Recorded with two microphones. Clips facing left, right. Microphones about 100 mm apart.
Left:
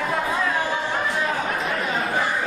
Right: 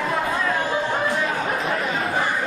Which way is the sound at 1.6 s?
Centre (ahead or behind).